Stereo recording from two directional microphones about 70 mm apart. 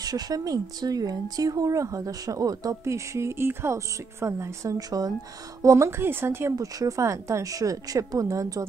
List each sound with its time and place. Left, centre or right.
0.0 s speech: right
2.8 s a woman's voice: right
4.7 s speech: right
5.6 s speech: right
5.9 s speech: right
6.5 s a woman's voice: right